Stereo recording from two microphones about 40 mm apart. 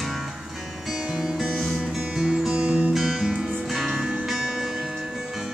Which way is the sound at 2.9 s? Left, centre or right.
Centre.